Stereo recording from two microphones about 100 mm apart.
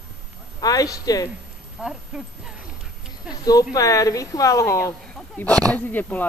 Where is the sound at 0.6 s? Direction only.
40° left (ahead or behind).